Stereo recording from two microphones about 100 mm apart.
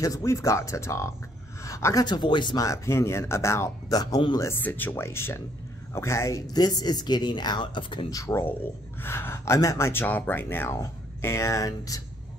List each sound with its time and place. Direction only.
0.0 s a woman's voice: 35° left (ahead or behind)
2.0 s a woman's voice: 50° left (ahead or behind)
2.5 s a woman's voice: 35° left (ahead or behind); by 8.1 s 55° left (ahead or behind)
8.1 s speech: 30° left (ahead or behind)